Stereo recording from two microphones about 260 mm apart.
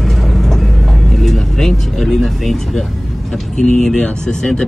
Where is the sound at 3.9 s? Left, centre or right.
Centre.